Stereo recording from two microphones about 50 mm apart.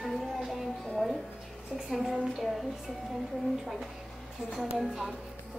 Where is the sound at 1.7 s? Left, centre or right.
Centre.